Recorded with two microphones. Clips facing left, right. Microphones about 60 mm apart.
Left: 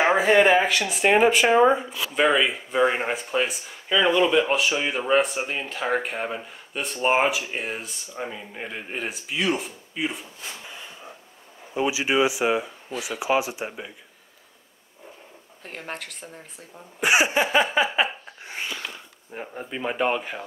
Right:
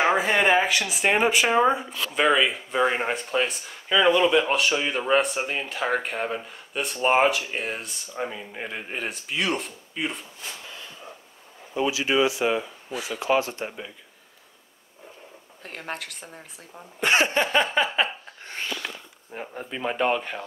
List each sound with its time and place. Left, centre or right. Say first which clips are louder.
0.0 s speech: left 3 dB; centre
10.6 s a sound: left 1 dB; centre
11.7 s speech: even; centre
15.6 s speech: right 1 dB; centre
17.0 s a sound: left 1 dB; centre
19.3 s speech: left 1 dB; centre